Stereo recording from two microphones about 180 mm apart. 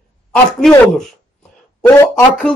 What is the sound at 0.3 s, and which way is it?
Speech, 5° left (ahead or behind).